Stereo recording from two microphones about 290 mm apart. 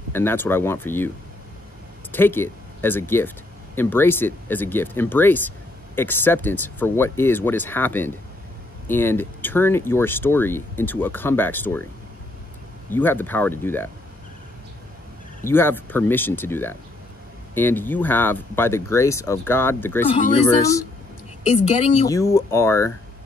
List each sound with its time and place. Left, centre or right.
0.1 s speech: centre
2.1 s speech: centre
12.9 s speech: centre
15.4 s speech: centre
20.1 s speech: centre